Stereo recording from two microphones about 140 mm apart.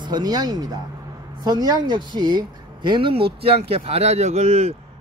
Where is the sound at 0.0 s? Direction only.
30° right (ahead or behind).